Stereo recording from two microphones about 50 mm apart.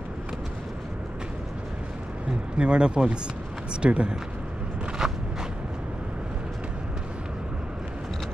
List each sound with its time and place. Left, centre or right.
2.2 s speech: centre
5.0 s walk: centre